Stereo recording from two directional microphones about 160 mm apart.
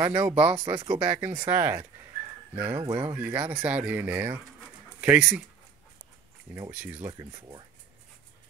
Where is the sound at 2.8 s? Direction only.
30° right (ahead or behind).